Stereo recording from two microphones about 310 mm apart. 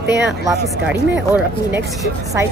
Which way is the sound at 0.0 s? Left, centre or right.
Right.